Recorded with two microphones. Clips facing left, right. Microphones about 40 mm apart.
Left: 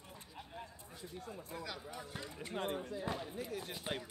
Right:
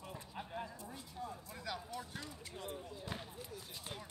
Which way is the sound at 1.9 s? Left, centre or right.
Centre.